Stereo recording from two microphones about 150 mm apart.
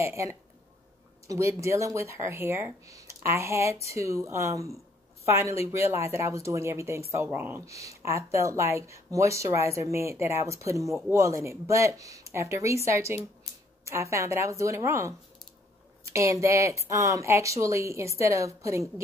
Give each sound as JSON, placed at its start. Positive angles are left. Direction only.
{"t": 0.0, "sound": "a woman's voice", "side_deg": -20}